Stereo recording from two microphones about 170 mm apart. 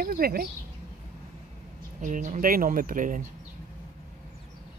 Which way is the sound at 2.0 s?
50° right (ahead or behind).